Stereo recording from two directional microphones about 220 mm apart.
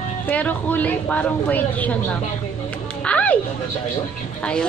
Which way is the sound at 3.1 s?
5° left (ahead or behind).